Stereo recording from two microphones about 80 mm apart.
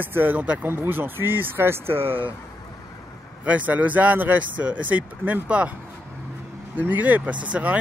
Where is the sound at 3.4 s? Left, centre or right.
Centre.